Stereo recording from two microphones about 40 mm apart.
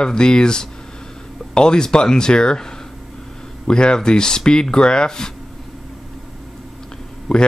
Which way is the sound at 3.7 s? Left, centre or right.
Left.